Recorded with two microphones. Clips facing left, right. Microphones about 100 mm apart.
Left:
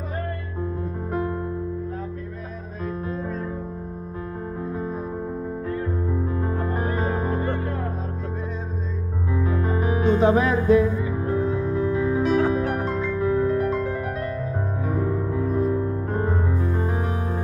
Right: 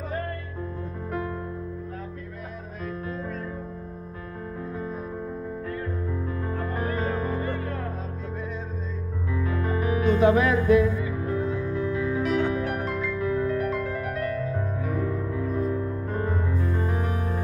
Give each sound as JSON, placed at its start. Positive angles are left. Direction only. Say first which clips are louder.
{"t": 3.1, "sound": "music", "louder": "left 4 dB", "side_deg": 25}
{"t": 6.4, "sound": "music", "louder": "left 3 dB", "side_deg": 25}
{"t": 9.3, "sound": "music", "louder": "left 3 dB", "side_deg": 25}